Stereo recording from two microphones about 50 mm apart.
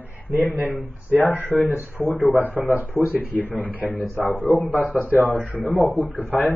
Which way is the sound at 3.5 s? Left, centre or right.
Left.